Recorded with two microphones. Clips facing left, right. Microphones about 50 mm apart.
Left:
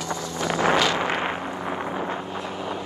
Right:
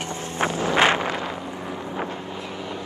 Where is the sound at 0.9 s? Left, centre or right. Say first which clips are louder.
Left 2 dB; left.